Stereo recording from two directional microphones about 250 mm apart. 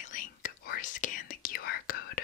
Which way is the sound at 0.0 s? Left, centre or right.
Left.